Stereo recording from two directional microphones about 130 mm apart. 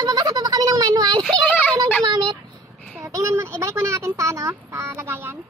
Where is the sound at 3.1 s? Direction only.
20° right (ahead or behind).